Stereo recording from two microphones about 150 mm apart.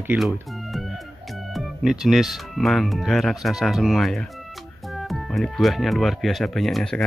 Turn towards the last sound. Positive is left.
turn(degrees=5)  # may be behind; listen again after turning